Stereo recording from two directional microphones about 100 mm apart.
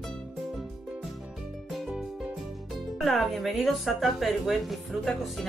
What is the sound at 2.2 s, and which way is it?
Speech, centre (ahead or behind).